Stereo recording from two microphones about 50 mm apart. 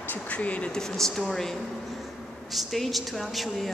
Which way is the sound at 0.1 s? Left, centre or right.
Left.